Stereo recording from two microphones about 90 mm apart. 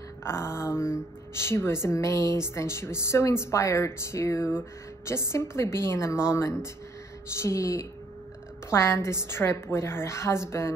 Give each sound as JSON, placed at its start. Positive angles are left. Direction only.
{"t": 0.2, "sound": "mantra", "side_deg": 30}
{"t": 1.3, "sound": "speech", "side_deg": 30}